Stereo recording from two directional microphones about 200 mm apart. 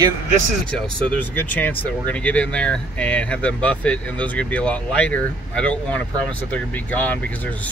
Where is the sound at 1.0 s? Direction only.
5° left (ahead or behind).